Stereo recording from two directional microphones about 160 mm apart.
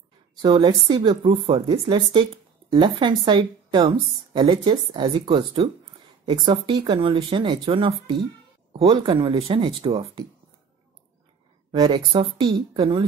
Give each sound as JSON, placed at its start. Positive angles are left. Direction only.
{"t": 0.4, "sound": "a woman's voice", "side_deg": -30}
{"t": 11.7, "sound": "a woman's voice", "side_deg": -30}